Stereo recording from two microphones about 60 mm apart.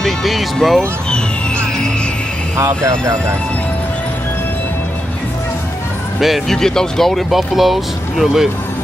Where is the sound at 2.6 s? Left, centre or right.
Right.